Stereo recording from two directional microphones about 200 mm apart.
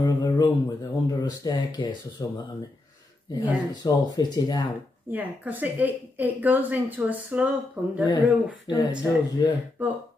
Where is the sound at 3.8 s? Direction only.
20° left (ahead or behind).